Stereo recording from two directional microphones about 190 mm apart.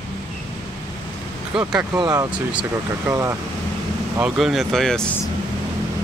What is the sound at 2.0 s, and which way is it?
Speech, 20° right (ahead or behind).